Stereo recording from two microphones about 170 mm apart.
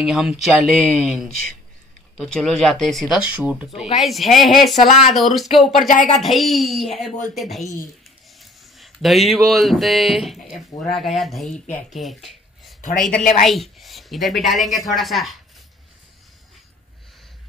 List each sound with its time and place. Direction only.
0.0 s a woman's voice: 5° right (ahead or behind)
5.8 s speech: 50° left (ahead or behind)
6.1 s a woman's voice: centre (ahead or behind)
13.2 s speech: 55° left (ahead or behind)
13.5 s a woman's voice: centre (ahead or behind)